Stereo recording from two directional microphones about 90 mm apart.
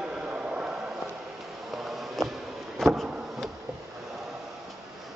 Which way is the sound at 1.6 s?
Centre (ahead or behind).